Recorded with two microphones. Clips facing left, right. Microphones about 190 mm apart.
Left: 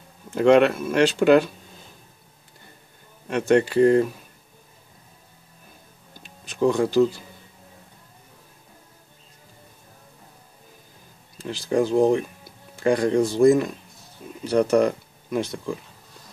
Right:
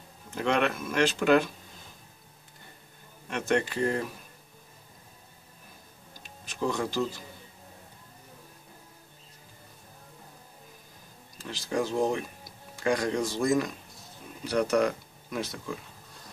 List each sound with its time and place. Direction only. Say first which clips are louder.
0.3 s speech: left 11 dB; 40° left (ahead or behind)
3.3 s speech: left 8 dB; 40° left (ahead or behind)
6.7 s speech: left 7 dB; 35° left (ahead or behind)
11.4 s speech: left 8 dB; 30° left (ahead or behind)